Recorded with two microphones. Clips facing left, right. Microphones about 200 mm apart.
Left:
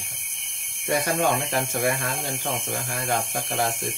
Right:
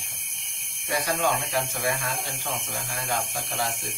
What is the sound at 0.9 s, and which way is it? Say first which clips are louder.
Speech: left 4 dB; 50° left (ahead or behind).